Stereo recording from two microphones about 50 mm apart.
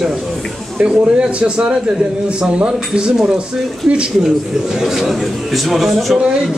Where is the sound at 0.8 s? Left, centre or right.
Right.